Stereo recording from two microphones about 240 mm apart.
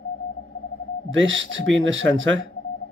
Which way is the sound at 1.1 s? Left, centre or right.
Right.